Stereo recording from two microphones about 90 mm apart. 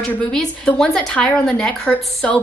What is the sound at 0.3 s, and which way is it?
A woman's voice, 5° left (ahead or behind).